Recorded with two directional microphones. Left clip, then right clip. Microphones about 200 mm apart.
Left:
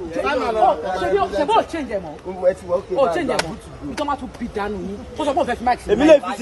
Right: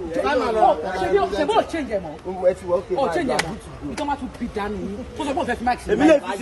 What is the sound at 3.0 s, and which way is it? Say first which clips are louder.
Speech: left 3 dB; centre (ahead or behind).